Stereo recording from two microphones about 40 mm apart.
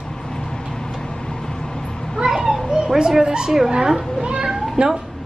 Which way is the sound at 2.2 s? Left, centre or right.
Centre.